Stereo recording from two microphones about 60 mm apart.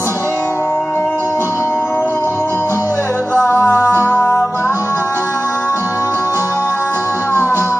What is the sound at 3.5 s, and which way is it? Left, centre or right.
Music, left.